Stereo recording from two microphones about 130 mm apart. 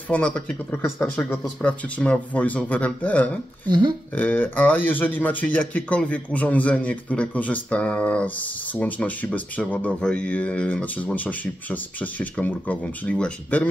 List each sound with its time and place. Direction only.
0.1 s speech: 10° left (ahead or behind)
3.6 s speech: 35° right (ahead or behind)
4.1 s speech: 10° left (ahead or behind)